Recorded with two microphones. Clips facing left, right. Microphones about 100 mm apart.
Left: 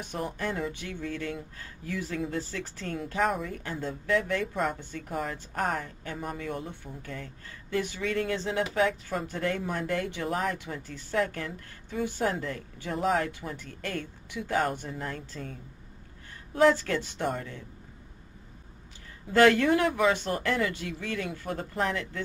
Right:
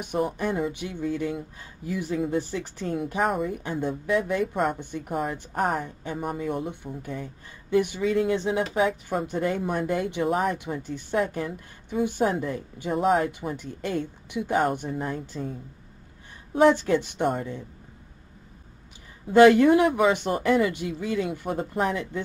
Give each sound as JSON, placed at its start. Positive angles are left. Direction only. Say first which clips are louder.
{"t": 0.0, "sound": "speech", "louder": "right 6 dB", "side_deg": -15}
{"t": 5.1, "sound": "speech", "louder": "right 4 dB", "side_deg": -5}
{"t": 12.9, "sound": "speech", "louder": "right 5 dB", "side_deg": -5}
{"t": 13.3, "sound": "speech", "louder": "right 6 dB", "side_deg": -20}
{"t": 19.2, "sound": "speech", "louder": "right 6 dB", "side_deg": -20}